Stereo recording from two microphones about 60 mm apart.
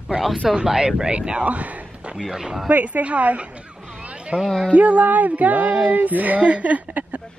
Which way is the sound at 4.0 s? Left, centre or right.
Centre.